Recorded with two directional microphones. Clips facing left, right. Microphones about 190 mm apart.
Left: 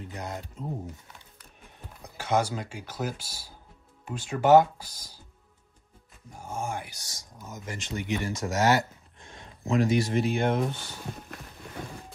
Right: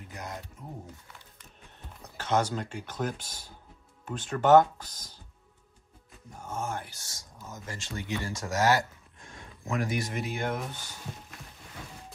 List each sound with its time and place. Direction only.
0.2 s speech: 25° left (ahead or behind)
2.1 s speech: 10° left (ahead or behind)
6.3 s speech: 10° left (ahead or behind); by 10.9 s 25° left (ahead or behind)